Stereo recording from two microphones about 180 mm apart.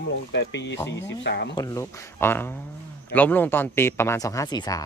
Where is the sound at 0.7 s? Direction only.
15° left (ahead or behind).